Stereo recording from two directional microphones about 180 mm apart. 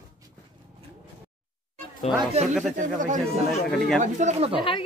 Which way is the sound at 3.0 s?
45° right (ahead or behind).